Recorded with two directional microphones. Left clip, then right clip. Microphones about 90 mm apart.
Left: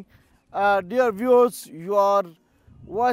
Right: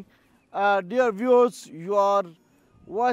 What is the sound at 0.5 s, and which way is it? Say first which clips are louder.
Speech: left 2 dB; 20° left (ahead or behind).